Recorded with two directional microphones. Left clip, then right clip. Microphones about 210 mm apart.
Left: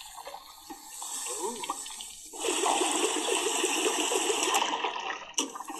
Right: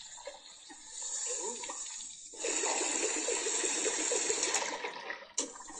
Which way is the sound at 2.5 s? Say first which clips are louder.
Left 7 dB; 35° left (ahead or behind).